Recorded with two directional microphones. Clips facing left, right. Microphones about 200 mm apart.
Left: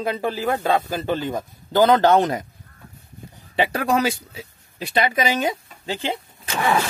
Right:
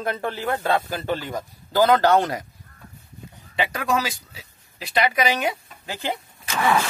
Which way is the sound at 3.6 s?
35° left (ahead or behind).